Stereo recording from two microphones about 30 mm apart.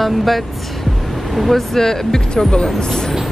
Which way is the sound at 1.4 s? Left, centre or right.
Centre.